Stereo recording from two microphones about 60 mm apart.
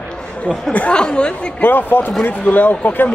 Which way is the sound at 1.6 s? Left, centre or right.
Left.